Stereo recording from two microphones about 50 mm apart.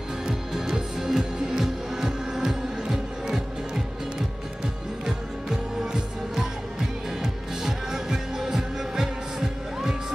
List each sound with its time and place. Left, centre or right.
0.3 s music: centre
5.0 s music: centre
7.6 s music: centre